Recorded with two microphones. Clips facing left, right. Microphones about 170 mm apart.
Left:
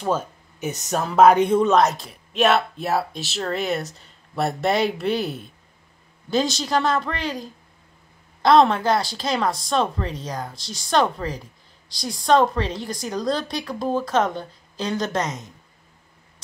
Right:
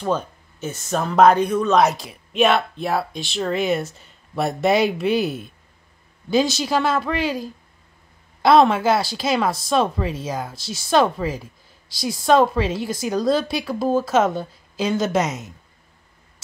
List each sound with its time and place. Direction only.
0.0 s speech: 10° left (ahead or behind)
0.9 s speech: 5° left (ahead or behind)
1.3 s speech: 25° left (ahead or behind)
2.0 s a woman's voice: centre (ahead or behind)